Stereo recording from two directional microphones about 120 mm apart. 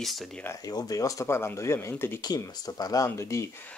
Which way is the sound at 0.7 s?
30° left (ahead or behind).